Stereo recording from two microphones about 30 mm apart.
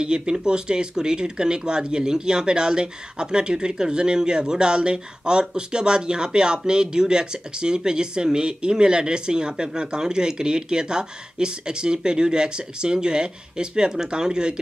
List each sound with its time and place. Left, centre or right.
0.0 s speech: right